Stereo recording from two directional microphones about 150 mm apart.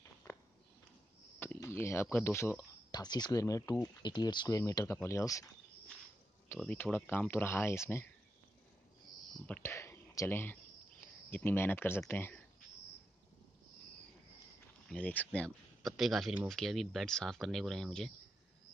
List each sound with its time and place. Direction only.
1.4 s speech: 15° left (ahead or behind)
6.6 s speech: 10° left (ahead or behind)
9.6 s a sound: 15° left (ahead or behind)
11.2 s speech: 15° left (ahead or behind)
14.9 s speech: 10° left (ahead or behind)